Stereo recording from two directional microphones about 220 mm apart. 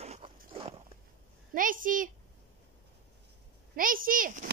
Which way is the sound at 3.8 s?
40° right (ahead or behind).